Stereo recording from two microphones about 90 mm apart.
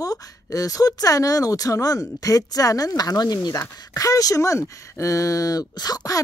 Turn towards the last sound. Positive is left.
turn(degrees=45)  # may be behind; listen again after turning